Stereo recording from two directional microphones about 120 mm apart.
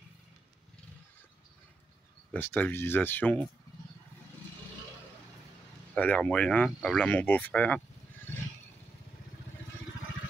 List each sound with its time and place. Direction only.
2.3 s speech: 15° left (ahead or behind)
5.9 s speech: 10° left (ahead or behind)